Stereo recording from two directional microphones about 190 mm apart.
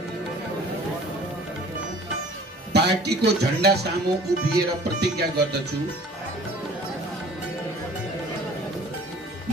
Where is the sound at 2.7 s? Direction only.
60° right (ahead or behind).